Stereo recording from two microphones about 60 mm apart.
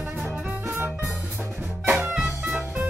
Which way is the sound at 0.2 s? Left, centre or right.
Right.